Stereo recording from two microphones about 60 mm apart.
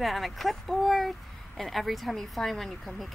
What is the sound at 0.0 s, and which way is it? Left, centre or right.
Speech, centre.